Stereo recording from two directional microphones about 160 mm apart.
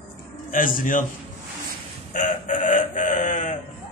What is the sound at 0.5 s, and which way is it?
Speech, 60° left (ahead or behind).